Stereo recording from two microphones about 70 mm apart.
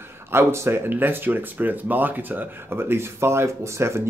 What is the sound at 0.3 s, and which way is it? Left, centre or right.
Speech, right.